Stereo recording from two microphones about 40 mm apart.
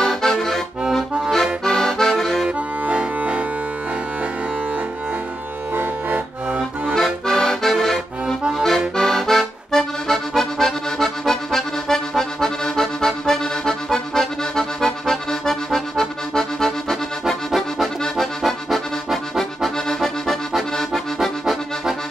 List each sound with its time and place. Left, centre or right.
0.0 s accordion: centre
2.8 s music: right
5.8 s accordion: right
6.9 s accordion: centre
18.1 s accordion: centre